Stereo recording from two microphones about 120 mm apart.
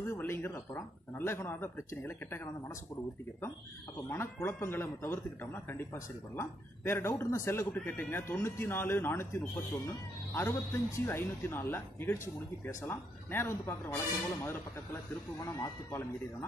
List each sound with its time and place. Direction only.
0.0 s speech: 20° left (ahead or behind)
4.1 s speech: 20° left (ahead or behind)
15.4 s speech: 25° left (ahead or behind)